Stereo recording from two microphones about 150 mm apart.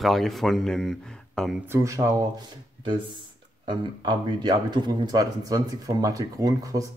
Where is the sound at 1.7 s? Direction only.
20° right (ahead or behind).